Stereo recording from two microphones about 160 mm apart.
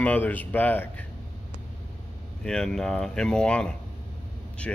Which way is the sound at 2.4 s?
5° left (ahead or behind).